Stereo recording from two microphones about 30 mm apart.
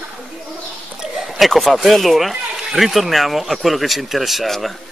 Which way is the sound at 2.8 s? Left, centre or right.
Centre.